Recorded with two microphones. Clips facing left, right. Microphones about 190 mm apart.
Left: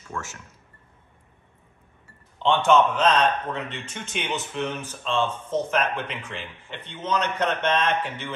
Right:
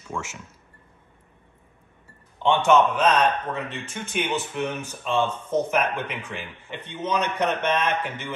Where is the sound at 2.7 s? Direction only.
10° right (ahead or behind).